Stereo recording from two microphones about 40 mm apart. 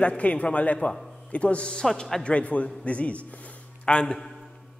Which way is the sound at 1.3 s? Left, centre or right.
Left.